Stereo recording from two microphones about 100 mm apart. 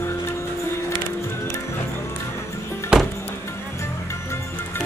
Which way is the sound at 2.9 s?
10° right (ahead or behind).